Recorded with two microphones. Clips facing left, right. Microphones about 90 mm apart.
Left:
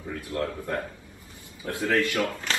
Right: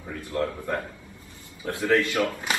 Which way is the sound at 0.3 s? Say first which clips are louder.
Right 2 dB; 25° right (ahead or behind).